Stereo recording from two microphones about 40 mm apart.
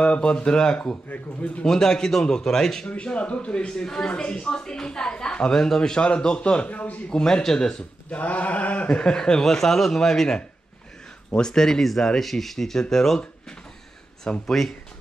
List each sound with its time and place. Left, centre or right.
0.0 s speech: left
1.0 s mantra: left
1.6 s a man's voice: centre
2.9 s speech: left
7.1 s a man's voice: centre
8.1 s mantra: left
8.8 s a man's voice: left
11.8 s a man's voice: centre
14.4 s a man's voice: centre